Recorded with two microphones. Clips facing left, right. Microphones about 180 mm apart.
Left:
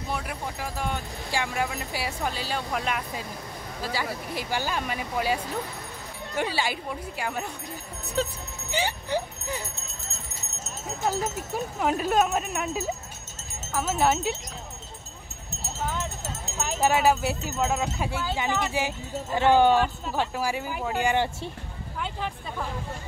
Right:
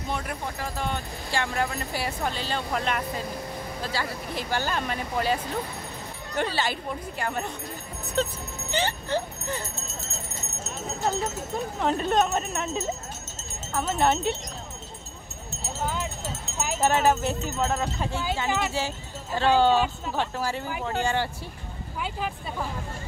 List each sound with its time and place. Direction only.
0.1 s speech: 5° left (ahead or behind)
11.1 s speech: 5° left (ahead or behind)
16.8 s speech: 10° left (ahead or behind)
22.0 s speech: 5° right (ahead or behind)